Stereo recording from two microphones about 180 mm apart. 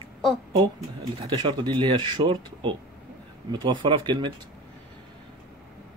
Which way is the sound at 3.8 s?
25° right (ahead or behind).